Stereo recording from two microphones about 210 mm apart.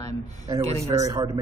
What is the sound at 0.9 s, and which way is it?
Speech, 15° right (ahead or behind).